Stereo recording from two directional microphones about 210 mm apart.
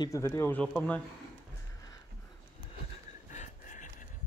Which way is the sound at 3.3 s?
35° left (ahead or behind).